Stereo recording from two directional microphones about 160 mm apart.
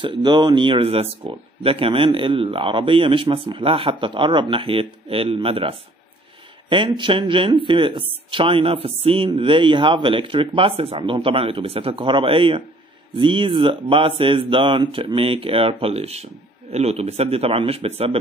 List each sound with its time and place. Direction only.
0.0 s speech: 30° right (ahead or behind)